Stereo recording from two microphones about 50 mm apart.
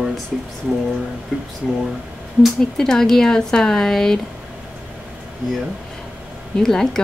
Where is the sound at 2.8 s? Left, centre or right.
Centre.